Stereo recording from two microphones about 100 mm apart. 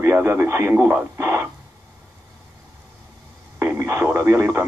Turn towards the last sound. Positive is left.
turn(degrees=-30)  # may be behind; listen again after turning